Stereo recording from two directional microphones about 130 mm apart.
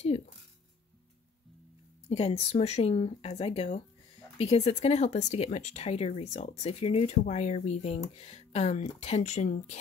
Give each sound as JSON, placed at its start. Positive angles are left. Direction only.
{"t": 2.0, "sound": "speech", "side_deg": 50}